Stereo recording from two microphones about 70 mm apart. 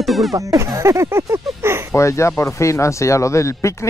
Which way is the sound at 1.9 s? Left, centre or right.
Left.